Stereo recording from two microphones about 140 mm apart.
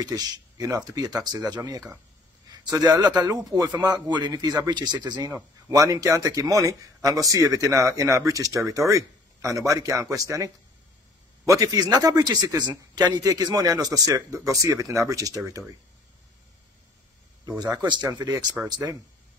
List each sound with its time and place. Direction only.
0.0 s a man's voice: 25° right (ahead or behind)
17.5 s a man's voice: 30° right (ahead or behind)